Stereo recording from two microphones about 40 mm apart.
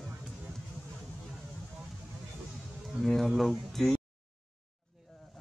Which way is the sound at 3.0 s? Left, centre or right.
Centre.